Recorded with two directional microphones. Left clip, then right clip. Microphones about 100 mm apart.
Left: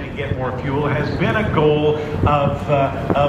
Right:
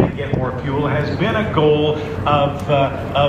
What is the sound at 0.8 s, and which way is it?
A man's voice, 5° left (ahead or behind).